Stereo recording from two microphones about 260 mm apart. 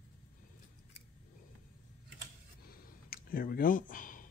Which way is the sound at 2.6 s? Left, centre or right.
Left.